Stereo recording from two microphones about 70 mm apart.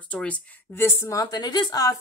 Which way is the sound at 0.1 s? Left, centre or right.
Centre.